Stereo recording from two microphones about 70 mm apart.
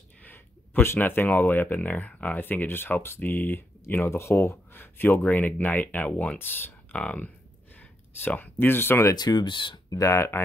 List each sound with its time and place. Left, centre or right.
0.2 s speech: left
6.9 s speech: centre
7.7 s a sound: left
9.1 s speech: left
10.1 s speech: left